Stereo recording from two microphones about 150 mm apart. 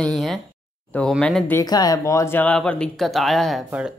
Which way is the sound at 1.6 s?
25° left (ahead or behind).